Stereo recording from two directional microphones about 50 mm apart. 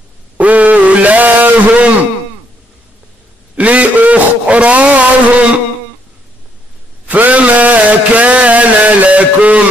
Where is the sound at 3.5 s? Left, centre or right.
Right.